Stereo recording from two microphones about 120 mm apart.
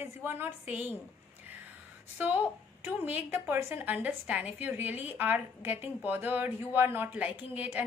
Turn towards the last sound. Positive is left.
turn(degrees=-10)  # may be behind; listen again after turning